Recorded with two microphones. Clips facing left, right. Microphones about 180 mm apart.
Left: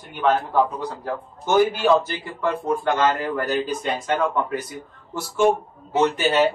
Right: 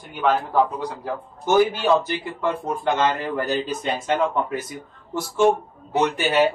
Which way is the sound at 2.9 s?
20° right (ahead or behind).